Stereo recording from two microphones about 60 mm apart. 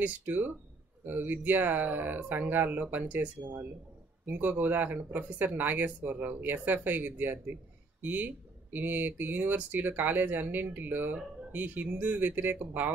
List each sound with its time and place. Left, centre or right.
0.0 s speech: right